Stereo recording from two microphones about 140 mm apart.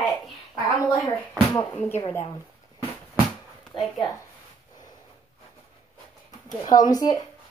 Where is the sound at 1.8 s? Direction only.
15° left (ahead or behind).